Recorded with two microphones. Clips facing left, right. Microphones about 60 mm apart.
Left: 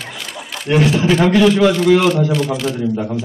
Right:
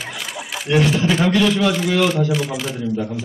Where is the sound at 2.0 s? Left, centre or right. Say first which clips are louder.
Left 3 dB; centre.